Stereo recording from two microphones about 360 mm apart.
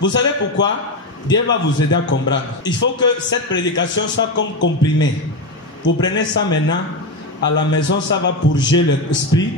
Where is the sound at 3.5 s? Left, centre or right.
Left.